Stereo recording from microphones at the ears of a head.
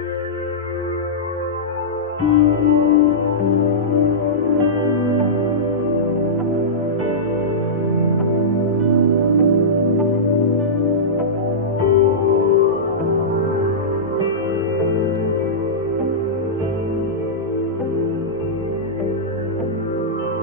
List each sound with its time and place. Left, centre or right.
2.2 s music: left
8.8 s music: right
10.3 s music: left